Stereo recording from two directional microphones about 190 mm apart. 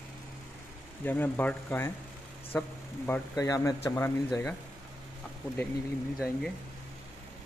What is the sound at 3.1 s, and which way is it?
Speech, 20° left (ahead or behind).